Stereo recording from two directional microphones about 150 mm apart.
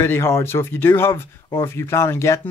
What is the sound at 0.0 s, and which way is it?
Speech, 15° left (ahead or behind).